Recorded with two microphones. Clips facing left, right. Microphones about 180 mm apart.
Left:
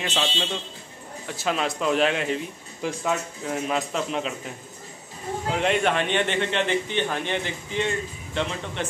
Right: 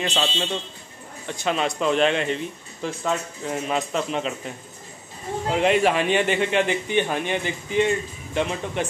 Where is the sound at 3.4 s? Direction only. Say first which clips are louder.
Right 1 dB; centre (ahead or behind).